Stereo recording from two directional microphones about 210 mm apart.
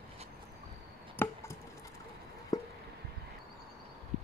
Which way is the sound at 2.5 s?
15° left (ahead or behind).